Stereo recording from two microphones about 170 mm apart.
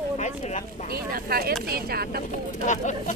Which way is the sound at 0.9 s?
65° right (ahead or behind).